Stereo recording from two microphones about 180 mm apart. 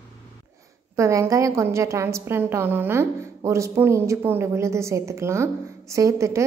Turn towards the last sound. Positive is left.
turn(degrees=-15)  # may be behind; listen again after turning